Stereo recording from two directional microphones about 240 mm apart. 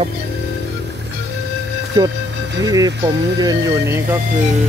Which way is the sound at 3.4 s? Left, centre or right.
Centre.